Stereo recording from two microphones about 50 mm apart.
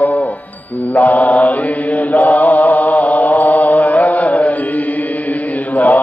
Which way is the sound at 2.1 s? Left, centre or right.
Left.